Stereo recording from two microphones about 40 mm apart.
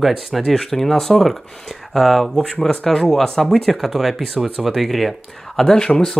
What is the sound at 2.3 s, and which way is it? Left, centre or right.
Speech, centre.